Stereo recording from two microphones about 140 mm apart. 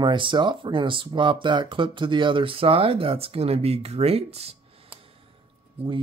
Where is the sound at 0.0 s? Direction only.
35° right (ahead or behind).